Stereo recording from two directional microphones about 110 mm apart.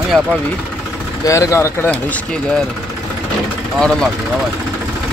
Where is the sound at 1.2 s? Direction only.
30° left (ahead or behind).